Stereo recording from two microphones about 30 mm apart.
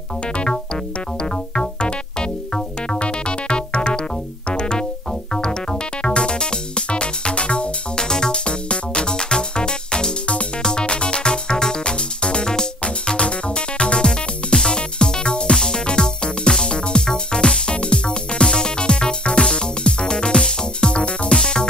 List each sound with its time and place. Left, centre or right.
1.3 s music: left
8.0 s music: left
8.3 s music: left